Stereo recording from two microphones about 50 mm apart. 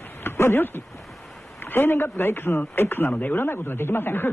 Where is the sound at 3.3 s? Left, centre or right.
Left.